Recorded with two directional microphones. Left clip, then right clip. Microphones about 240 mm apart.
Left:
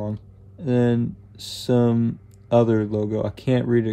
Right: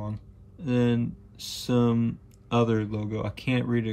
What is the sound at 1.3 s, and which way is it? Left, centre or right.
Speech, centre.